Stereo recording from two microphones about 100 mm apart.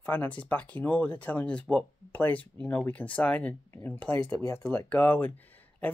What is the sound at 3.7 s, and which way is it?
Speech, 25° left (ahead or behind).